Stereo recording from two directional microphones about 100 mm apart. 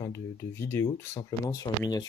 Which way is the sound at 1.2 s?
35° left (ahead or behind).